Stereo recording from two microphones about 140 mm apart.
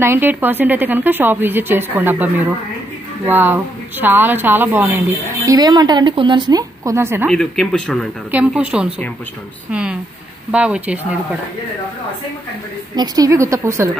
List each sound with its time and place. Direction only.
0.0 s a woman's voice: 15° right (ahead or behind)
7.2 s speech: 5° left (ahead or behind)
8.3 s a woman's voice: 10° right (ahead or behind)
12.9 s a woman's voice: 30° right (ahead or behind)